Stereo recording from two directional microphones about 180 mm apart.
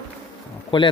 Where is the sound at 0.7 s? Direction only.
25° left (ahead or behind).